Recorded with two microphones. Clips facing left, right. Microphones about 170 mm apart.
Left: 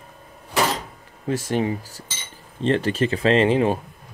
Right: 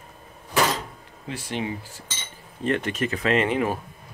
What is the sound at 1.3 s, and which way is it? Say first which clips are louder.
Speech: left 7 dB; 45° left (ahead or behind).